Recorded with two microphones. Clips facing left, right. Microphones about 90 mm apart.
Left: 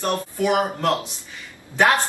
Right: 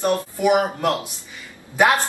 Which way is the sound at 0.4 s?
15° right (ahead or behind).